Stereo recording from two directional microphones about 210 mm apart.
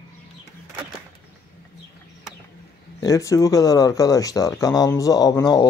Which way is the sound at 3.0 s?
15° left (ahead or behind).